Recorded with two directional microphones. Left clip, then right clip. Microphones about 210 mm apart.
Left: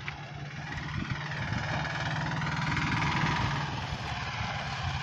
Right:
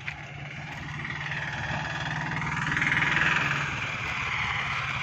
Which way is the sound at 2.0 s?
15° left (ahead or behind).